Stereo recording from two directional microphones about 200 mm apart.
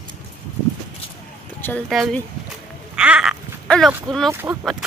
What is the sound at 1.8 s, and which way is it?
Speech, centre (ahead or behind).